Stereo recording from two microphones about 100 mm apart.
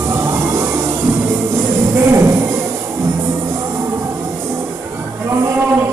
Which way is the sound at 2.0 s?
30° right (ahead or behind).